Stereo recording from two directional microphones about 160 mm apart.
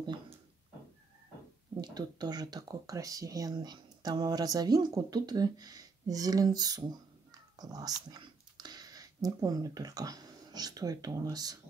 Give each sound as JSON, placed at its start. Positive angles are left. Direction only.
{"t": 2.0, "sound": "speech", "side_deg": -25}